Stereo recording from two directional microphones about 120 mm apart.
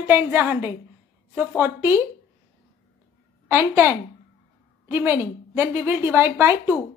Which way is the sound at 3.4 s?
20° right (ahead or behind).